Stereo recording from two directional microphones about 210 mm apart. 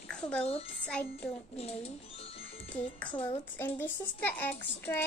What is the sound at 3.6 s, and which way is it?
A child's voice, 10° left (ahead or behind).